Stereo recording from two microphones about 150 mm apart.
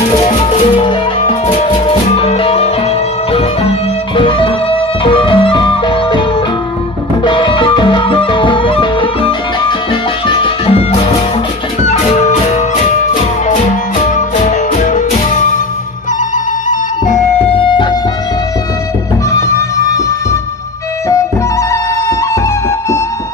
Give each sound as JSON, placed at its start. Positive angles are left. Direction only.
{"t": 0.7, "sound": "music", "side_deg": 35}
{"t": 4.2, "sound": "music", "side_deg": 35}
{"t": 7.2, "sound": "music", "side_deg": 30}
{"t": 14.1, "sound": "music", "side_deg": 55}
{"t": 17.6, "sound": "music", "side_deg": 35}
{"t": 19.3, "sound": "music", "side_deg": 20}